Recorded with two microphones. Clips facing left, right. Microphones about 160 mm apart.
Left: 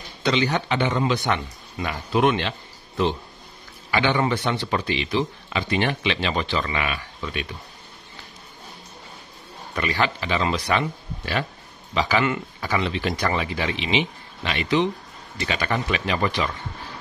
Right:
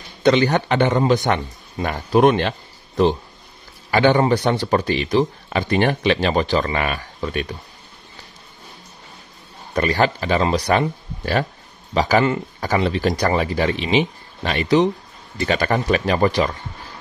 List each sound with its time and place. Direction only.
0.2 s speech: 50° right (ahead or behind)
3.9 s speech: 40° right (ahead or behind)
9.8 s speech: 40° right (ahead or behind)